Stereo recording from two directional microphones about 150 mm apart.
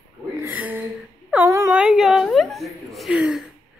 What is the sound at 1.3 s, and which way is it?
Speech, 20° right (ahead or behind).